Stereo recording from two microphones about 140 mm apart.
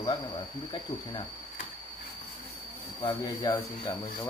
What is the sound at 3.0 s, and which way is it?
Speech, 35° left (ahead or behind).